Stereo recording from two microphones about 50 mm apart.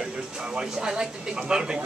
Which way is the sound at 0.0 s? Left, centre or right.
Centre.